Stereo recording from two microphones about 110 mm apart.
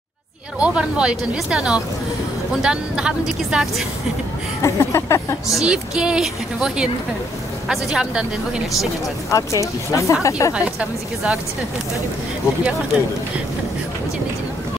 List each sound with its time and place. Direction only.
0.6 s a woman's voice: 10° right (ahead or behind)
4.6 s speech: 25° left (ahead or behind)
5.5 s a woman's voice: 5° right (ahead or behind)
9.3 s speech: 30° left (ahead or behind)
10.5 s a woman's voice: 10° right (ahead or behind)